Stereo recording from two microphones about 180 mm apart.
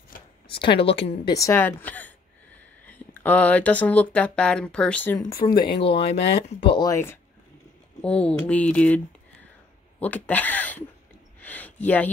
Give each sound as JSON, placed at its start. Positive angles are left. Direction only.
{"t": 0.7, "sound": "a woman's voice", "side_deg": 30}
{"t": 1.3, "sound": "speech", "side_deg": 15}
{"t": 5.5, "sound": "a woman's voice", "side_deg": 30}
{"t": 11.4, "sound": "a sound", "side_deg": 10}